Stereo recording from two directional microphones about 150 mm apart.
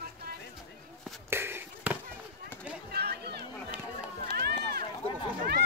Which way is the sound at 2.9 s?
90° right.